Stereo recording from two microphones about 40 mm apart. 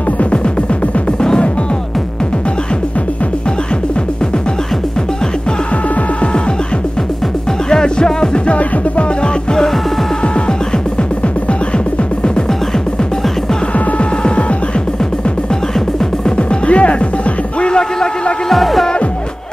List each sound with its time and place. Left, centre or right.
1.2 s music: centre
7.7 s music: centre
8.5 s music: left
13.7 s music: left
16.3 s music: left
18.5 s music: centre